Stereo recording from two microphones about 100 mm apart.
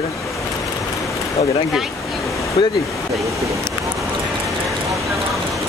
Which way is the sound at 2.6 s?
45° left (ahead or behind).